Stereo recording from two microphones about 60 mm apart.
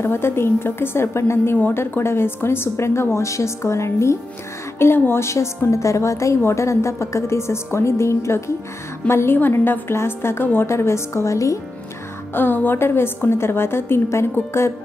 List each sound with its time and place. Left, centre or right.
0.0 s a woman's voice: left
4.7 s a woman's voice: left
5.2 s a woman's voice: left
10.7 s a woman's voice: left
12.4 s a woman's voice: left